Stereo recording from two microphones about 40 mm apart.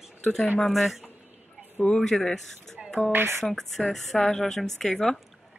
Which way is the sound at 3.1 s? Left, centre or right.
Right.